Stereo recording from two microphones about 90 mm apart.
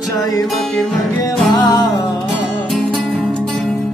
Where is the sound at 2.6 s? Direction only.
Centre (ahead or behind).